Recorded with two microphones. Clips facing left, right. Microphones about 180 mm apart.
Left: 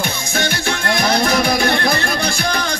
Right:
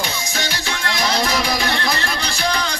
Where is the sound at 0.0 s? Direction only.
55° left (ahead or behind).